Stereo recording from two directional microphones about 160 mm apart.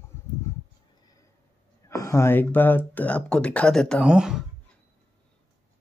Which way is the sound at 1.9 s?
15° left (ahead or behind).